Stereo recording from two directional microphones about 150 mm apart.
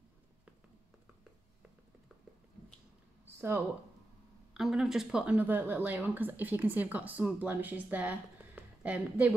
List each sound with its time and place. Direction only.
3.3 s speech: 15° right (ahead or behind)
4.6 s speech: 5° right (ahead or behind)